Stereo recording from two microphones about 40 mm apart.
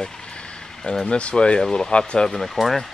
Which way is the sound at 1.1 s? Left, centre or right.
Left.